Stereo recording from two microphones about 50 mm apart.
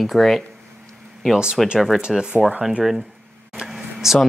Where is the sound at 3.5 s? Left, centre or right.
Centre.